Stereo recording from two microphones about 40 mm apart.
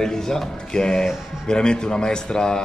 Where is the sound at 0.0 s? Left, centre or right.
Centre.